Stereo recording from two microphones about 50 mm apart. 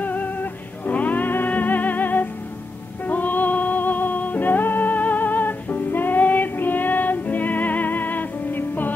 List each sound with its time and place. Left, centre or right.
0.0 s music: left